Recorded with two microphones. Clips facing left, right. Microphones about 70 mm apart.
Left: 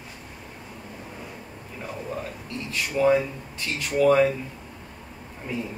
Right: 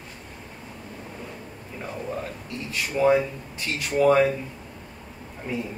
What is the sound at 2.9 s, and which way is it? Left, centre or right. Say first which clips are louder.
A man's voice: right 1 dB; centre.